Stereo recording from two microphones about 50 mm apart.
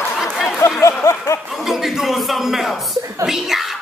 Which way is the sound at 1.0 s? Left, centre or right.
Left.